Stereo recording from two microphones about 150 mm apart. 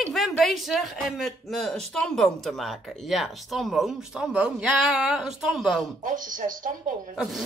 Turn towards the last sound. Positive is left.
turn(degrees=0)  # may be behind; listen again after turning